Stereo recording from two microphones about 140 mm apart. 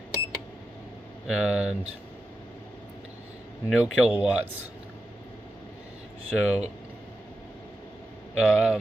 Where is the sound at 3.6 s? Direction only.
10° right (ahead or behind).